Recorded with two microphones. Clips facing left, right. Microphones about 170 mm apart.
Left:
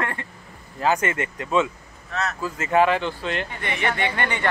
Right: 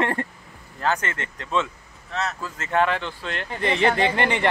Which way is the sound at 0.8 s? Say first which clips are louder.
Left 3 dB; 10° left (ahead or behind).